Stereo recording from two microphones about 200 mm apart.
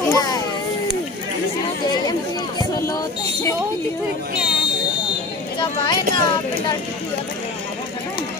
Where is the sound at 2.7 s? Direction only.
15° left (ahead or behind).